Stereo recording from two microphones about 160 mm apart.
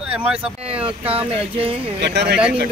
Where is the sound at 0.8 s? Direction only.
35° right (ahead or behind).